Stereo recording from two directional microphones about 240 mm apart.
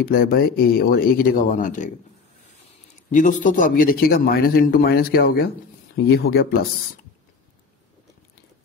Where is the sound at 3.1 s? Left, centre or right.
Left.